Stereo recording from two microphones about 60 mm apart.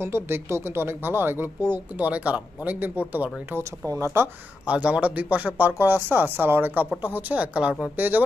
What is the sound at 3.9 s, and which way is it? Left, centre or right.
Speech, right.